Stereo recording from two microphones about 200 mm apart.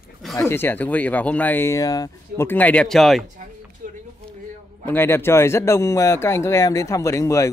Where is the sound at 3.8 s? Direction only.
45° right (ahead or behind).